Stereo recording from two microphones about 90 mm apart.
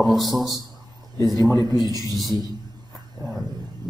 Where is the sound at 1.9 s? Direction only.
45° right (ahead or behind).